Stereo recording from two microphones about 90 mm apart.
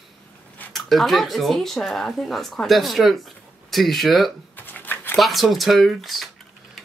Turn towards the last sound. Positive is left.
turn(degrees=0)  # may be behind; listen again after turning